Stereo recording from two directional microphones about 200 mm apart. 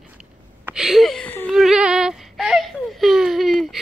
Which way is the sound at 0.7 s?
5° right (ahead or behind).